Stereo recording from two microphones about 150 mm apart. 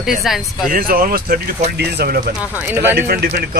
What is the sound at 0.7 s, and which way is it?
Speech, 75° right (ahead or behind).